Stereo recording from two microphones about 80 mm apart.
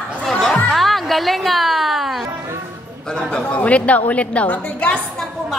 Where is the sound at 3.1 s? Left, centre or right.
Centre.